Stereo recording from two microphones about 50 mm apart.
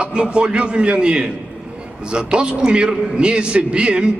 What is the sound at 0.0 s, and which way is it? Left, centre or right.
A man's voice, right.